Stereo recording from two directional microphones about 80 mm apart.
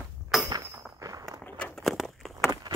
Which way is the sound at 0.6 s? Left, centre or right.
Right.